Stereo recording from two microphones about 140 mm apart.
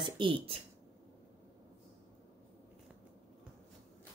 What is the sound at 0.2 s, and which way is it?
Speech, 40° right (ahead or behind).